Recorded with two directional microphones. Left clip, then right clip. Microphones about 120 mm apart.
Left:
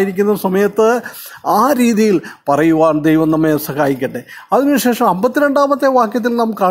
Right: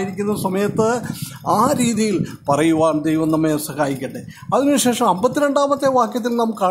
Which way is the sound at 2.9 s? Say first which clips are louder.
Left 5 dB; 45° left (ahead or behind).